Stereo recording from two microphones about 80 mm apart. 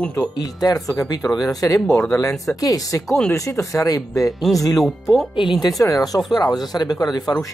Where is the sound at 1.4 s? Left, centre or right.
Left.